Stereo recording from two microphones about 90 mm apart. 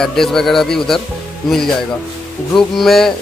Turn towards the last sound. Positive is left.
turn(degrees=5)  # may be behind; listen again after turning